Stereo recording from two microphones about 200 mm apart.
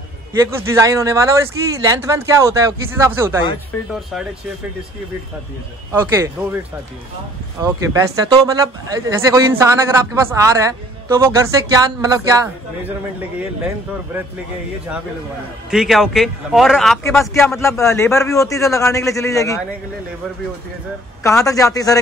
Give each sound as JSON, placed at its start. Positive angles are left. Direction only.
{"t": 0.5, "sound": "speech", "side_deg": -15}
{"t": 3.7, "sound": "a man's voice", "side_deg": 5}
{"t": 5.9, "sound": "speech", "side_deg": -10}
{"t": 7.6, "sound": "speech", "side_deg": -15}
{"t": 15.7, "sound": "a man's voice", "side_deg": -5}
{"t": 17.6, "sound": "a man's voice", "side_deg": 15}
{"t": 21.5, "sound": "a man's voice", "side_deg": 15}